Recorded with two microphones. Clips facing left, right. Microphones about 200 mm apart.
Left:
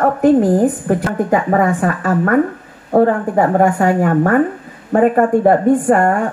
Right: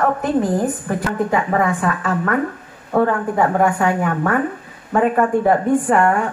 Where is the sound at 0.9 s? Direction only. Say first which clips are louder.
Left 5 dB; 45° left (ahead or behind).